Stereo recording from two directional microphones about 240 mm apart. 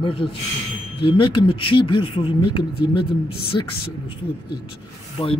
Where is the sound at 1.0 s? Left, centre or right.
Left.